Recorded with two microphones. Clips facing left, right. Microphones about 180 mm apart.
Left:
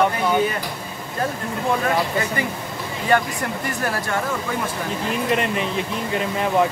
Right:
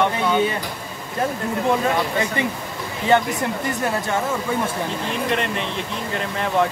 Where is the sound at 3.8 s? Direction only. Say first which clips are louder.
Even; 20° right (ahead or behind).